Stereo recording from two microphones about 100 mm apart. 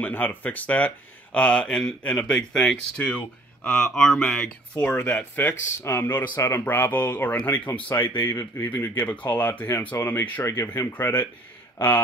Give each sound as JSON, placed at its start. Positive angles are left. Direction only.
{"t": 0.0, "sound": "speech", "side_deg": 15}